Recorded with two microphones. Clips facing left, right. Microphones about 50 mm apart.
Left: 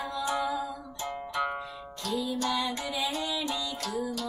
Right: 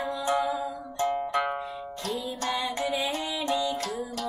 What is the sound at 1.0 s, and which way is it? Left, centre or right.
Music, right.